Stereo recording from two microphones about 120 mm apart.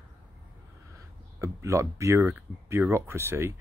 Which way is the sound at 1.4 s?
25° right (ahead or behind).